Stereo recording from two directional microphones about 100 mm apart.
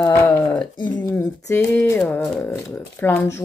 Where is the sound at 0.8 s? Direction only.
50° left (ahead or behind).